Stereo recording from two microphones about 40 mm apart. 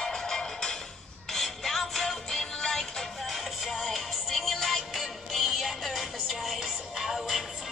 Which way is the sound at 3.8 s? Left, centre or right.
Centre.